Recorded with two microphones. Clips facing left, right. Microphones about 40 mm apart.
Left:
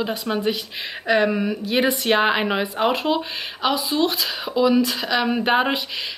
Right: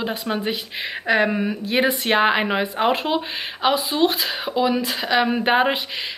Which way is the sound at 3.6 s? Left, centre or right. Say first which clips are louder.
Right 2 dB; right.